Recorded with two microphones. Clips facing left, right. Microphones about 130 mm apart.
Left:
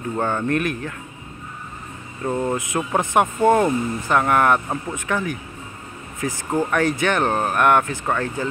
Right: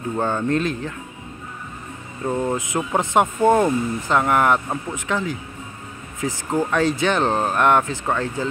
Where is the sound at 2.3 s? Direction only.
Centre (ahead or behind).